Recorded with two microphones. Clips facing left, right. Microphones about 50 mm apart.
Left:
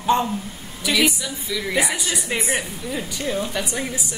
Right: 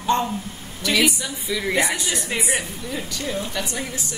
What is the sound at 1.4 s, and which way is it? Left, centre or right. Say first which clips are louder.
Speech: right 2 dB; centre.